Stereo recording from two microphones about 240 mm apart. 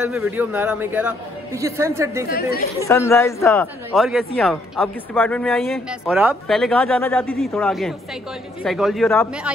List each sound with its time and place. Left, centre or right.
0.0 s a man's voice: centre
2.2 s speech: left
2.9 s a man's voice: centre